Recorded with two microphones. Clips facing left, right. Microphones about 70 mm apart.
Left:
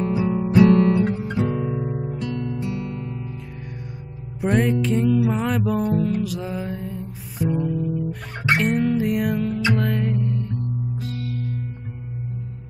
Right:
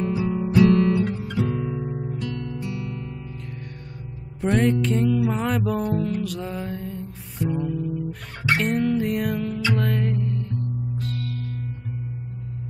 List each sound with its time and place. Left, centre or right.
0.0 s guitar: left
4.4 s music: centre